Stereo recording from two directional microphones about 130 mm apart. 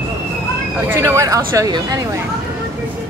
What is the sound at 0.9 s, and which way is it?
Speech, 20° right (ahead or behind).